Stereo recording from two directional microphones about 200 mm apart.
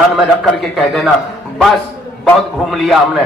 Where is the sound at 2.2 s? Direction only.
Centre (ahead or behind).